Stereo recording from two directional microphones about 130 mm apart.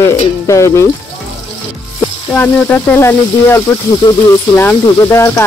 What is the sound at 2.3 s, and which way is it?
Speech, 15° left (ahead or behind).